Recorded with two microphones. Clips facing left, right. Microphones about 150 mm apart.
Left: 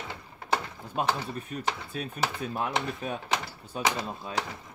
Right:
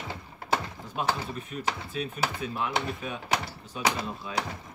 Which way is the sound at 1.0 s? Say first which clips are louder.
Left 1 dB; 45° left (ahead or behind).